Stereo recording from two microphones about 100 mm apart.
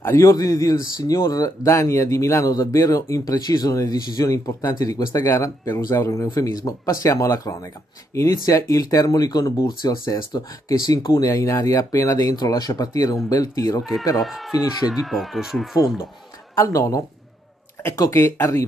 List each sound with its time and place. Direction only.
0.0 s speech: 30° left (ahead or behind)
14.2 s speech: centre (ahead or behind)
16.5 s speech: 35° left (ahead or behind)